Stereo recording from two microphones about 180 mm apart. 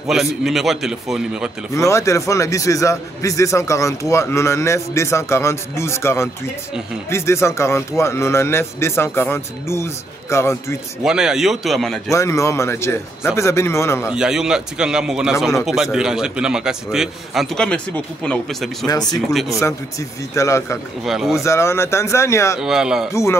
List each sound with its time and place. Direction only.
0.1 s a man's voice: centre (ahead or behind)
1.9 s a man's voice: 15° left (ahead or behind)
11.1 s a man's voice: 5° right (ahead or behind)
12.1 s a man's voice: 15° left (ahead or behind)
14.1 s a man's voice: 5° right (ahead or behind)
18.9 s a man's voice: 20° left (ahead or behind)
21.0 s a man's voice: centre (ahead or behind)
21.4 s a man's voice: 15° left (ahead or behind)
22.6 s a man's voice: 5° right (ahead or behind)